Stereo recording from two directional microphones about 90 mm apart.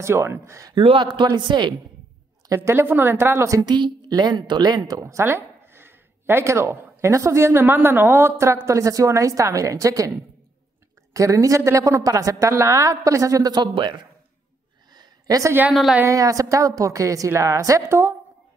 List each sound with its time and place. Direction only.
0.0 s a woman's voice: 30° right (ahead or behind)
0.7 s speech: 70° right (ahead or behind); by 1.8 s 55° right (ahead or behind)
2.4 s speech: 35° right (ahead or behind)
3.6 s speech: 55° right (ahead or behind)
5.0 s a woman's voice: 30° right (ahead or behind)
11.1 s a woman's voice: 35° right (ahead or behind); by 14.0 s 60° right (ahead or behind)
14.9 s a sound: 45° right (ahead or behind)
16.1 s a woman's voice: 40° right (ahead or behind)